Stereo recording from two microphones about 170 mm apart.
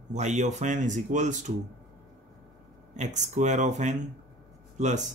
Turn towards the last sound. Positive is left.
turn(degrees=-45)  # may be behind; listen again after turning